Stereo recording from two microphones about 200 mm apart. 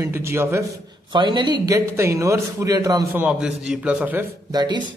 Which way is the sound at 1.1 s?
20° right (ahead or behind).